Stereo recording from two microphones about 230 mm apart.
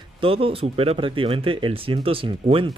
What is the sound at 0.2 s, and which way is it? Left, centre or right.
Speech, right.